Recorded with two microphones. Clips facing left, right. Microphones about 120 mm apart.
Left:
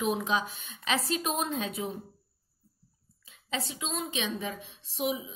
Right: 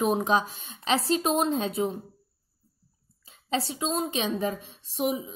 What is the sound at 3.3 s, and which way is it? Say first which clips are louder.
A woman's voice: right 6 dB; 35° right (ahead or behind).